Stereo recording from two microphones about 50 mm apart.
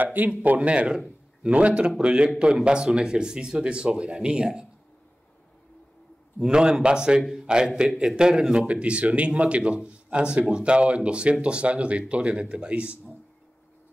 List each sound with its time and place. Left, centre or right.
0.0 s speech: right; by 4.6 s centre
6.4 s a man's voice: centre